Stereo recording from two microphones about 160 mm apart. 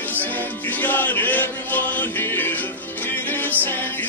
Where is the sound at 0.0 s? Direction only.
10° left (ahead or behind).